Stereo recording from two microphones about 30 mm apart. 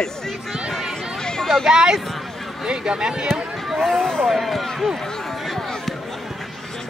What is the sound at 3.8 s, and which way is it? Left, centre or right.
Speech, centre.